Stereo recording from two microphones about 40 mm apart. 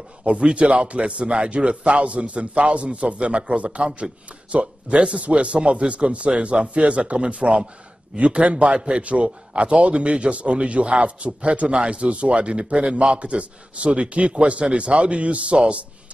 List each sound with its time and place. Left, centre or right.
0.2 s a man's voice: right